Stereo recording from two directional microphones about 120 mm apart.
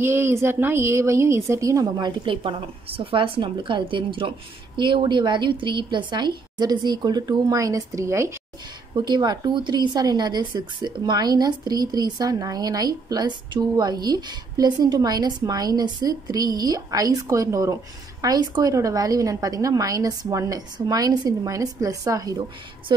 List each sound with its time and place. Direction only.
0.0 s a woman's voice: 20° right (ahead or behind)
2.0 s a woman's voice: 40° right (ahead or behind); by 8.4 s 25° right (ahead or behind)
8.9 s a woman's voice: 35° right (ahead or behind)